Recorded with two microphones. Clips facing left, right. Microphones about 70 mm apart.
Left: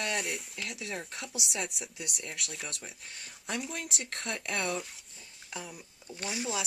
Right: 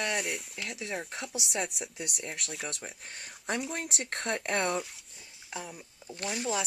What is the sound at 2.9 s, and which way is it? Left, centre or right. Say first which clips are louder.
Speech: right 2 dB; right.